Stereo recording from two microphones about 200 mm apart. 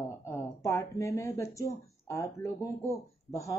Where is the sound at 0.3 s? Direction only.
15° left (ahead or behind).